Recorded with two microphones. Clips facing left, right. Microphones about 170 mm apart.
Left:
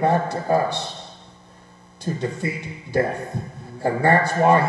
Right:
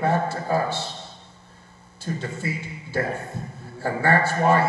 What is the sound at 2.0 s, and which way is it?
Speech, 15° left (ahead or behind).